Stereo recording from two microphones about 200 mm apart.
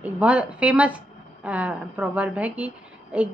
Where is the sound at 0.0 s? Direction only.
5° right (ahead or behind).